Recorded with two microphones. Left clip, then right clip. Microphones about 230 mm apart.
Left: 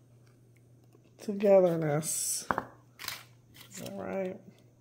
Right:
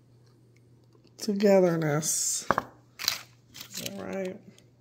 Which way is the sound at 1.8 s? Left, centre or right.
Centre.